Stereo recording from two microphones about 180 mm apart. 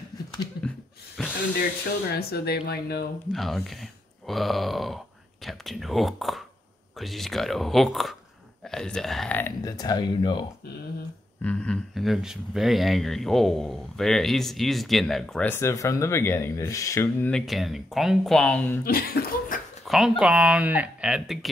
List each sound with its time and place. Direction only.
1.2 s a sound: centre (ahead or behind)
2.1 s speech: 60° left (ahead or behind)
3.3 s speech: centre (ahead or behind)
9.7 s speech: 20° left (ahead or behind)
11.4 s speech: 5° left (ahead or behind)
17.3 s speech: centre (ahead or behind)
18.9 s speech: 60° left (ahead or behind)
19.8 s speech: centre (ahead or behind)